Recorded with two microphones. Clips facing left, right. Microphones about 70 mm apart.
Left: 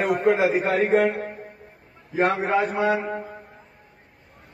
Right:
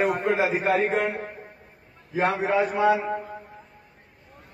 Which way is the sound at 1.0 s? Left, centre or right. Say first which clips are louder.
Left 5 dB; left.